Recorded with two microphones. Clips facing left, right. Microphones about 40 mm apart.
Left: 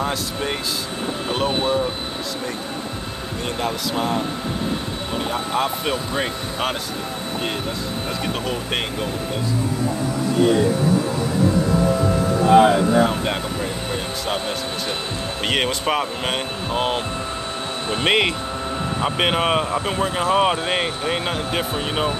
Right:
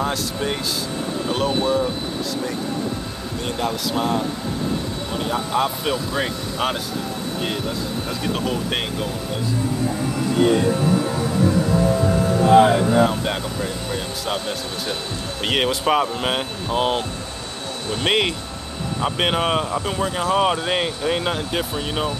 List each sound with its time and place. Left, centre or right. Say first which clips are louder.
0.0 s speech: right 1 dB; centre
1.5 s speech: right 1 dB; left
3.4 s speech: even; centre
8.5 s speech: right 1 dB; centre
13.1 s speech: left 1 dB; centre
15.4 s speech: right 2 dB; centre
18.0 s speech: left 1 dB; centre